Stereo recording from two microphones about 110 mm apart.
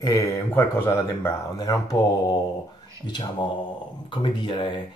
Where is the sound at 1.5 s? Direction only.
35° left (ahead or behind).